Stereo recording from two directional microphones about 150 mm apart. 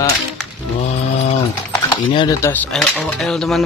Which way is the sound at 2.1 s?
30° left (ahead or behind).